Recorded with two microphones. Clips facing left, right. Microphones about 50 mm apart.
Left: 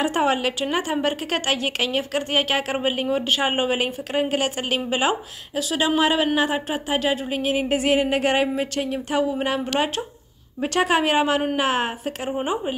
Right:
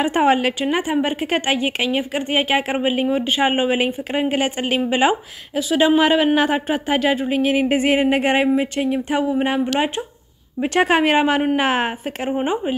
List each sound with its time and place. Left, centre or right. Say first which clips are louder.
0.0 s a woman's voice: right 4 dB; right